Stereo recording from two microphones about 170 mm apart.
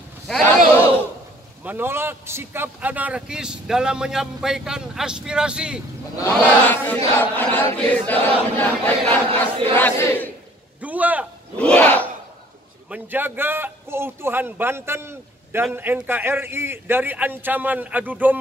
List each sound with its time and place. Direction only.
1.6 s a man's voice: 10° right (ahead or behind)
6.1 s chant: 10° left (ahead or behind)
9.3 s a sound: 35° right (ahead or behind)
9.8 s chant: 10° left (ahead or behind)
10.8 s a sound: 10° right (ahead or behind)
11.5 s battle cry: 10° left (ahead or behind)
12.9 s a man's voice: 10° right (ahead or behind)